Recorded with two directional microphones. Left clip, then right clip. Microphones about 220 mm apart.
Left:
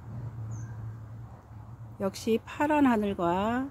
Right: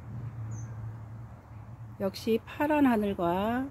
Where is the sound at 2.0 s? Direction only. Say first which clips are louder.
Even; 5° left (ahead or behind).